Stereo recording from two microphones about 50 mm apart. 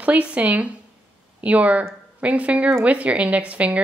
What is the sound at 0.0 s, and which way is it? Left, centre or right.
Speech, right.